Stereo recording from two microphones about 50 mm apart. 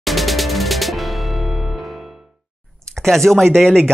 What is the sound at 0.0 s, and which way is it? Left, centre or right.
Music, centre.